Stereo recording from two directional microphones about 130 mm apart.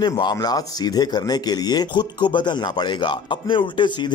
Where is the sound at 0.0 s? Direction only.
35° left (ahead or behind).